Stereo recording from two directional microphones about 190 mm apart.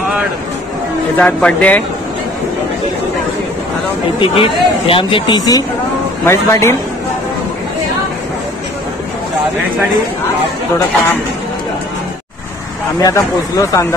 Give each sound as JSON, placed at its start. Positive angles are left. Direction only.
{"t": 1.1, "sound": "speech", "side_deg": 5}
{"t": 4.2, "sound": "speech", "side_deg": 30}
{"t": 13.0, "sound": "speech", "side_deg": 15}